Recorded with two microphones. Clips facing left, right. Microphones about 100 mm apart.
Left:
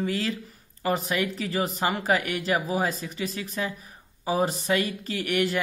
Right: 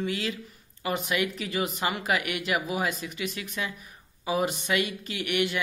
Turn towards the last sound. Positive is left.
turn(degrees=40)  # may be behind; listen again after turning